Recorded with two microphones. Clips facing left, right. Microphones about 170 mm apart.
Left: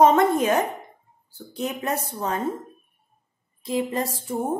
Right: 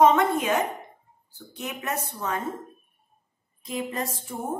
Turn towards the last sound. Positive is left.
turn(degrees=30)  # may be behind; listen again after turning